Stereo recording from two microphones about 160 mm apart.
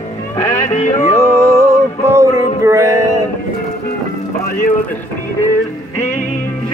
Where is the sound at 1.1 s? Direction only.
20° right (ahead or behind).